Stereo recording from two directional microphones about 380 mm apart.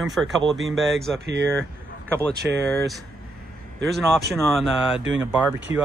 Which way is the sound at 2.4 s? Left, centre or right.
Centre.